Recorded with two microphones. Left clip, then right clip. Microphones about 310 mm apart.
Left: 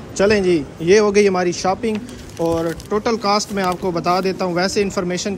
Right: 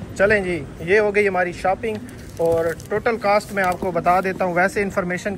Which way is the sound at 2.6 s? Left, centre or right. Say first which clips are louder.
Left 1 dB; left.